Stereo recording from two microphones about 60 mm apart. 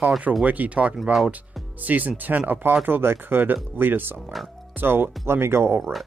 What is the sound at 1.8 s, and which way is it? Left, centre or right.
Speech, right.